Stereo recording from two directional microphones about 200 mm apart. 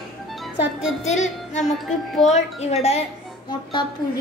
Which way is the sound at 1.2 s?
35° left (ahead or behind).